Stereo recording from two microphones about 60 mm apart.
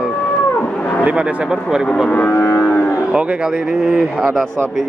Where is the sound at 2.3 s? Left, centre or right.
Left.